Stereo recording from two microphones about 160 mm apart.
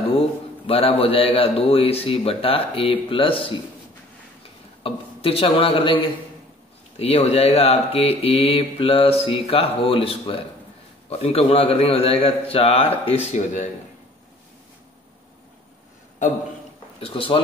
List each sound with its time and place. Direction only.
0.7 s speech: 35° left (ahead or behind)
4.8 s speech: 35° left (ahead or behind)
17.0 s speech: 35° left (ahead or behind)